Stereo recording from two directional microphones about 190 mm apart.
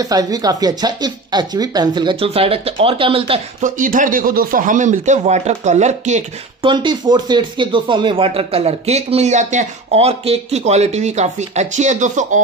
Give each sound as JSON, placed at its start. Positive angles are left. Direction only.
{"t": 0.0, "sound": "speech", "side_deg": -20}
{"t": 3.6, "sound": "speech", "side_deg": -45}
{"t": 6.6, "sound": "speech", "side_deg": -25}